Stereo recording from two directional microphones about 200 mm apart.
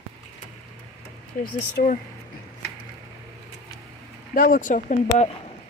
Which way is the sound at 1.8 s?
45° left (ahead or behind).